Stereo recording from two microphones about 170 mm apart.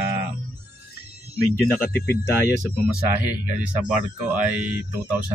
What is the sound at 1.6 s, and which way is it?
Speech, 10° left (ahead or behind).